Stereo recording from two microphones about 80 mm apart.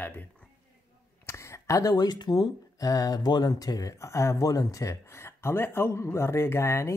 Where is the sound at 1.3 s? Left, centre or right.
Left.